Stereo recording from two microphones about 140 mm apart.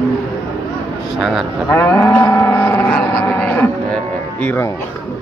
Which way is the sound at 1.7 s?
15° left (ahead or behind).